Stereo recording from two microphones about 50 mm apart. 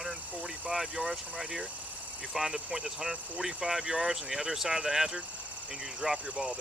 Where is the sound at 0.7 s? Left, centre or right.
Centre.